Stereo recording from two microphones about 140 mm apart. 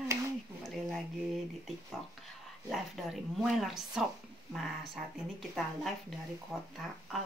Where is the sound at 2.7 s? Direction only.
Centre (ahead or behind).